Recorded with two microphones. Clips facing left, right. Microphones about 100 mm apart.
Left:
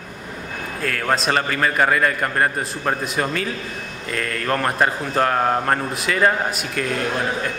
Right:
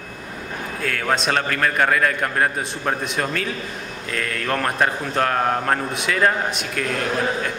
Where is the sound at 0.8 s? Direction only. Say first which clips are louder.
Left 1 dB; centre (ahead or behind).